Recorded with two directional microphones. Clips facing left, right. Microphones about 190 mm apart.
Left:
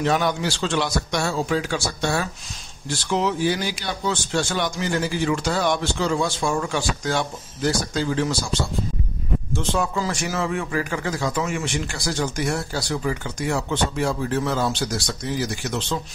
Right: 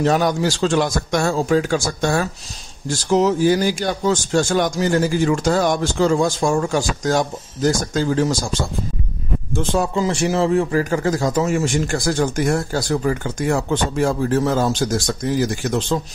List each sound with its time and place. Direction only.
0.0 s a man's voice: 40° right (ahead or behind)
9.9 s a man's voice: 25° right (ahead or behind); by 16.0 s 50° right (ahead or behind)